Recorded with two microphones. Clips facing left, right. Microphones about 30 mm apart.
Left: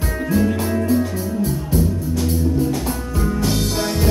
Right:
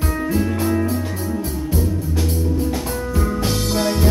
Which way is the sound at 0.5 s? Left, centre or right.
Centre.